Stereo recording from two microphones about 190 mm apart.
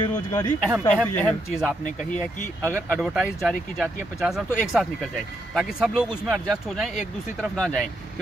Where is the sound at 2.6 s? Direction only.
10° right (ahead or behind).